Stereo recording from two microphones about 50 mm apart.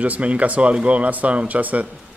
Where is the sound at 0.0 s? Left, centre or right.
Right.